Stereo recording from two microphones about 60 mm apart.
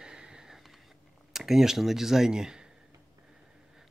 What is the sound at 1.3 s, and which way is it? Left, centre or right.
Speech, centre.